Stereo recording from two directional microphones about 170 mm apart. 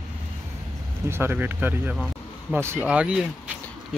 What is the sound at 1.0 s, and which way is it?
Speech, 15° right (ahead or behind).